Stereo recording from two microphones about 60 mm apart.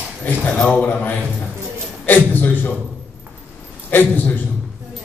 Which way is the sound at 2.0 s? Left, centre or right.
Left.